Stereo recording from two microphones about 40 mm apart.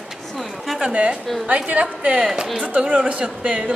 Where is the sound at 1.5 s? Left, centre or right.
Right.